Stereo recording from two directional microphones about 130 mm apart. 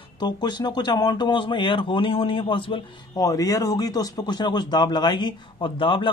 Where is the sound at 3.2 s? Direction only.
25° left (ahead or behind).